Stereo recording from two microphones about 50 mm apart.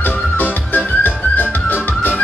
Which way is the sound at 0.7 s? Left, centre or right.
Left.